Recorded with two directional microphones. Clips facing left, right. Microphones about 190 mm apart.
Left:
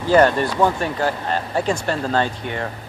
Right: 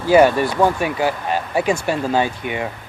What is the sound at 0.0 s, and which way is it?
Speech, 10° right (ahead or behind).